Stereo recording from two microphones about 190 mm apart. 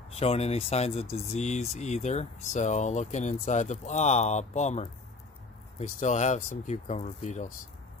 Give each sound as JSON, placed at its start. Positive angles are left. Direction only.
{"t": 0.1, "sound": "speech", "side_deg": 35}
{"t": 5.9, "sound": "speech", "side_deg": 40}